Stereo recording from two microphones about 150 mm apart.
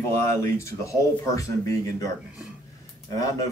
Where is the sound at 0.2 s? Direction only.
20° left (ahead or behind).